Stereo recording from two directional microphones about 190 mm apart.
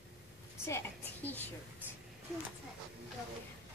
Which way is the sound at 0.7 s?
10° left (ahead or behind).